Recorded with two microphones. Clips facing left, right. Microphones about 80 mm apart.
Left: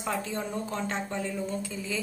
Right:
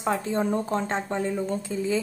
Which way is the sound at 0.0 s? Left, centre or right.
Right.